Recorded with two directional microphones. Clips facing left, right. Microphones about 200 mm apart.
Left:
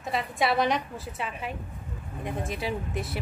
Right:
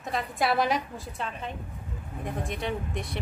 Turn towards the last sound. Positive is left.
turn(degrees=5)  # may be behind; listen again after turning